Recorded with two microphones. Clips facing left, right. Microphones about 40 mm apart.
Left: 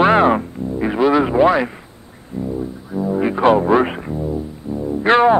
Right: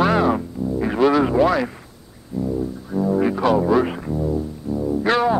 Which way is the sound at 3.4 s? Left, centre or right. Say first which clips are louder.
Left 6 dB; left.